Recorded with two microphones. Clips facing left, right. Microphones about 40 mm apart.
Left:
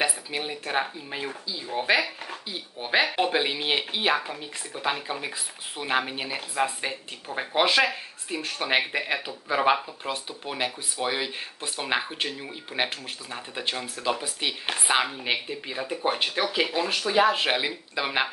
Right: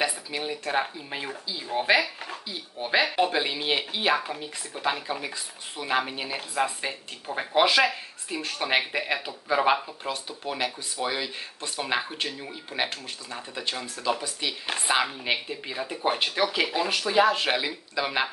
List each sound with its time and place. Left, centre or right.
0.0 s speech: centre
1.1 s speech: centre
2.8 s speech: centre
11.8 s speech: centre
14.9 s speech: centre